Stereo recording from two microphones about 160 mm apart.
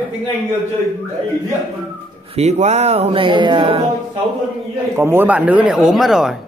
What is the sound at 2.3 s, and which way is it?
Speech, 45° right (ahead or behind).